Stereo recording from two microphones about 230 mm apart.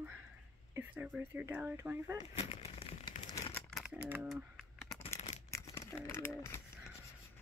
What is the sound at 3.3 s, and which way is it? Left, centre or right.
Crumpling, centre.